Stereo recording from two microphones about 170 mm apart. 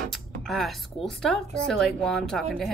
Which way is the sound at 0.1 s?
Centre (ahead or behind).